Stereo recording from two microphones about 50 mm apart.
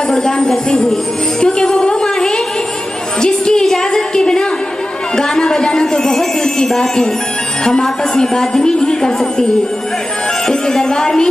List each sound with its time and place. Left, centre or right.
0.1 s a woman's voice: centre
1.4 s music: centre
3.2 s a sound: centre
7.6 s a woman's voice: centre